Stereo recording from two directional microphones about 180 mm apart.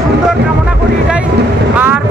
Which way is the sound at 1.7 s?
10° right (ahead or behind).